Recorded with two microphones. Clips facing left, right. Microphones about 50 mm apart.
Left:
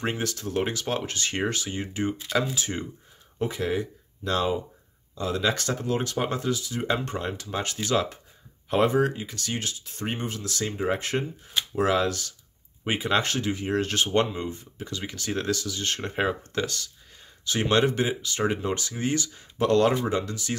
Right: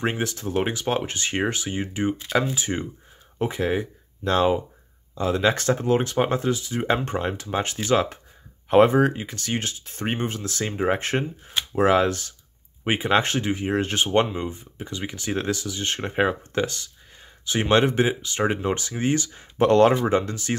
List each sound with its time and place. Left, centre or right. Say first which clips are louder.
0.0 s speech: right 3 dB; right